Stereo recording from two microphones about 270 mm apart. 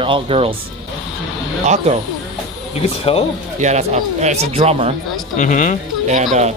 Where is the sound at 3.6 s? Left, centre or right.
Right.